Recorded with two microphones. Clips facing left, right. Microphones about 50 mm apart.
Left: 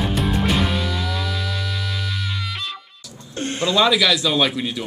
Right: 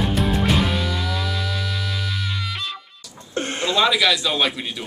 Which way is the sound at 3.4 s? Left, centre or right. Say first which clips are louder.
Left 1 dB; right.